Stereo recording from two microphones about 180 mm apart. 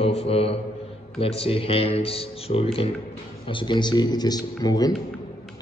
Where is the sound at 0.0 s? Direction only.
35° left (ahead or behind).